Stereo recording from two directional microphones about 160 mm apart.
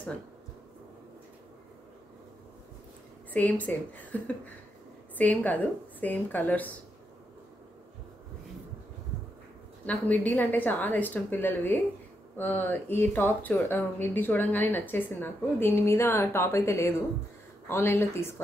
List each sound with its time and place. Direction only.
3.3 s speech: 10° left (ahead or behind)
9.8 s speech: 10° left (ahead or behind)